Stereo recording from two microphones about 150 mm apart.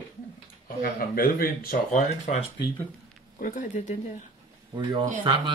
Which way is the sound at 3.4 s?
55° left (ahead or behind).